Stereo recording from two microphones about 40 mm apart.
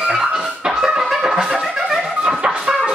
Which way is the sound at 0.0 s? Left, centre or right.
Centre.